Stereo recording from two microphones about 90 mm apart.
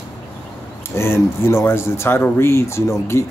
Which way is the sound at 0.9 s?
30° left (ahead or behind).